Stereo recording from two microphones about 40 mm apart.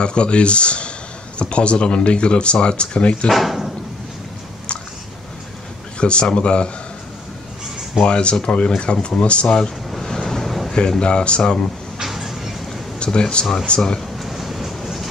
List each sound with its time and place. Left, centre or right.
0.0 s speech: left
3.3 s speech: centre
5.9 s speech: left
8.0 s speech: left
9.8 s vehicle: centre
11.0 s speech: left
12.0 s vehicle: centre
13.0 s speech: left
14.1 s vehicle: centre